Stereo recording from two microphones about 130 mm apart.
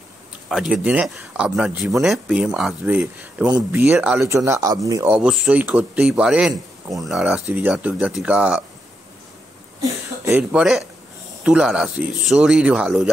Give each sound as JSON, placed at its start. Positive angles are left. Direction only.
{"t": 0.5, "sound": "speech", "side_deg": -5}
{"t": 3.4, "sound": "speech", "side_deg": -30}
{"t": 3.8, "sound": "speech", "side_deg": -15}
{"t": 5.1, "sound": "speech", "side_deg": -5}
{"t": 9.8, "sound": "a sound", "side_deg": -25}
{"t": 10.5, "sound": "speech", "side_deg": -5}